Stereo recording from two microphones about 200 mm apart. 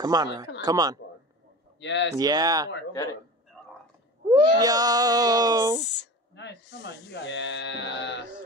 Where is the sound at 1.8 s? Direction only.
65° left (ahead or behind).